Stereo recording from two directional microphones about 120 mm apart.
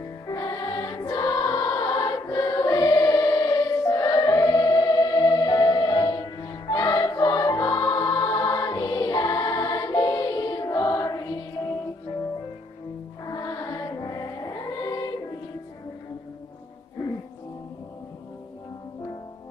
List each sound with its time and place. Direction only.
0.3 s choir: 30° left (ahead or behind)
6.7 s music: 30° left (ahead or behind)
13.3 s music: 30° left (ahead or behind)